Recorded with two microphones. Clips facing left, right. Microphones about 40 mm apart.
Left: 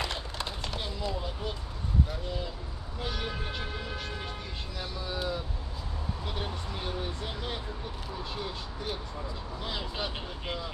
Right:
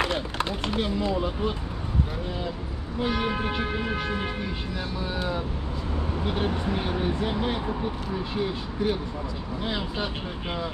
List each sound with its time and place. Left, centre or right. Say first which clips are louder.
0.1 s a sound: right 8 dB; right
0.7 s speech: right 10 dB; right
3.0 s speech: right 9 dB; right
6.2 s speech: right 11 dB; right; by 10.0 s centre